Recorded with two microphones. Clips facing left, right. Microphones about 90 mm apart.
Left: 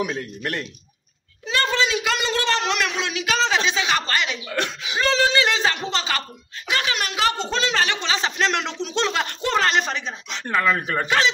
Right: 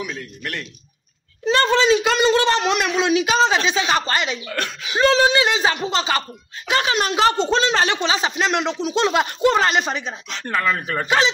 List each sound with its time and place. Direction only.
0.0 s a man's voice: 40° left (ahead or behind)
1.4 s a child's voice: 35° right (ahead or behind)
4.6 s speech: 20° left (ahead or behind)
4.9 s a woman's voice: 20° right (ahead or behind)
10.3 s speech: 10° left (ahead or behind)